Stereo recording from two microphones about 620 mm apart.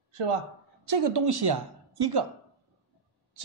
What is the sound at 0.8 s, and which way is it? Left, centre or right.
A woman's voice, right.